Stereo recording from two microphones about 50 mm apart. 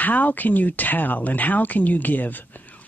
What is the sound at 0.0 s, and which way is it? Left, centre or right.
Speech, left.